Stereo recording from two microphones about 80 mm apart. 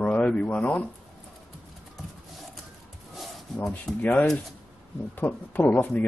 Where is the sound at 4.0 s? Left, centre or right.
Left.